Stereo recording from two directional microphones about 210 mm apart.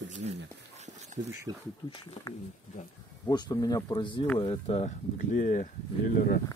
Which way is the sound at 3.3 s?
20° left (ahead or behind).